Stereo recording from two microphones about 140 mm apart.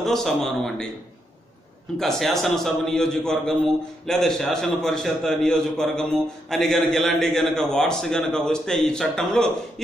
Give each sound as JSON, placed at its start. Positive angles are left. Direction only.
{"t": 0.0, "sound": "a man's voice", "side_deg": 5}
{"t": 2.0, "sound": "a man's voice", "side_deg": 0}